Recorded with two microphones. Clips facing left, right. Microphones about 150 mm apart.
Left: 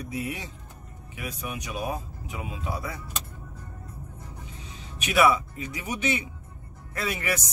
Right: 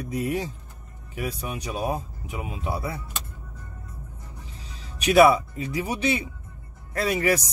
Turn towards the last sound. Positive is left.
turn(degrees=-35)  # may be behind; listen again after turning